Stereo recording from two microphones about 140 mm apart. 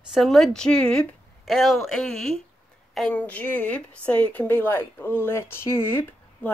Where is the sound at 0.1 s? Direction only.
Centre (ahead or behind).